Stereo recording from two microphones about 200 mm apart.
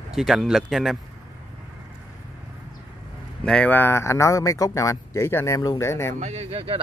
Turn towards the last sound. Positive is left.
turn(degrees=-30)  # may be behind; listen again after turning